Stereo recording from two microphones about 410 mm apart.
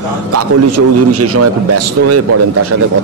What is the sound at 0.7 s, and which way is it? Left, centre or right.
Speech, right.